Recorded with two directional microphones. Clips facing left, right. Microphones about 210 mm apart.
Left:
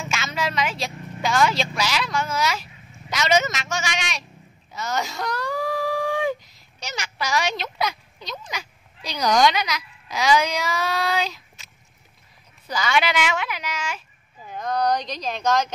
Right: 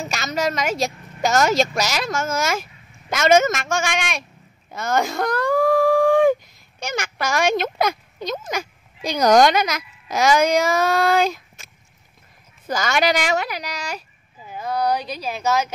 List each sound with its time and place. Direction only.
0.0 s speech: 40° right (ahead or behind)
4.7 s wail: 50° right (ahead or behind)
6.8 s a woman's voice: 50° right (ahead or behind)
14.4 s speech: 5° right (ahead or behind)